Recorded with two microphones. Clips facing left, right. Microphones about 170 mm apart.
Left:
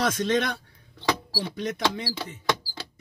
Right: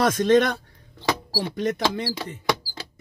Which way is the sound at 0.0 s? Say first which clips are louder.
Right 6 dB; 50° right (ahead or behind).